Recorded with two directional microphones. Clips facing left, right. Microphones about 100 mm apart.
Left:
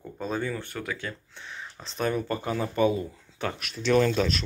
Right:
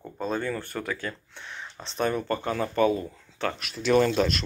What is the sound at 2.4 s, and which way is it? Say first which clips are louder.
Speech: right 1 dB; 10° left (ahead or behind).